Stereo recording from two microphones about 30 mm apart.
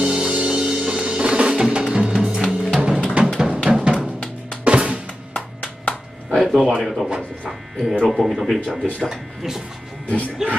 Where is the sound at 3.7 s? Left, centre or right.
Right.